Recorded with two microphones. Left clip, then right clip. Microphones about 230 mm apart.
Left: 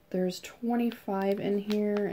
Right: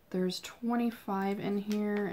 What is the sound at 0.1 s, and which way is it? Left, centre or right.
Speech, centre.